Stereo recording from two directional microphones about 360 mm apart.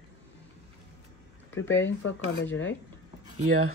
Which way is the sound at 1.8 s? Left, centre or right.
Left.